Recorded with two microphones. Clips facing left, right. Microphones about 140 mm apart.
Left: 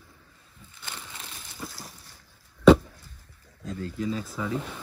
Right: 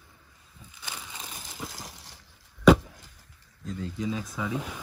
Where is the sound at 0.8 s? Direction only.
15° right (ahead or behind).